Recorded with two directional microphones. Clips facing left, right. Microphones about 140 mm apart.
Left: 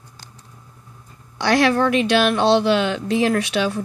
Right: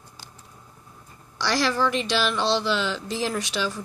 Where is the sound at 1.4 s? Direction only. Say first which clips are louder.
Left 6 dB; 60° left (ahead or behind).